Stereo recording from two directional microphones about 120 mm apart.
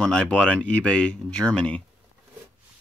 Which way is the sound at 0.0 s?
10° left (ahead or behind).